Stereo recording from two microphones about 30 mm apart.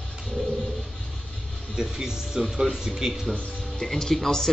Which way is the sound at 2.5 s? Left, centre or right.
Centre.